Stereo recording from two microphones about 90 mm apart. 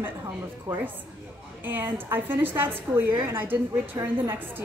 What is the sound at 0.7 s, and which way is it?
A woman's voice, 20° right (ahead or behind).